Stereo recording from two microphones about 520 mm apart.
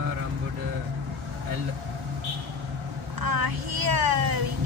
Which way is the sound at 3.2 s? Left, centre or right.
Right.